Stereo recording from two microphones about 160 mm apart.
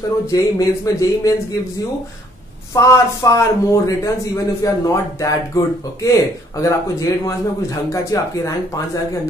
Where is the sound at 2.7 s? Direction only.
20° left (ahead or behind).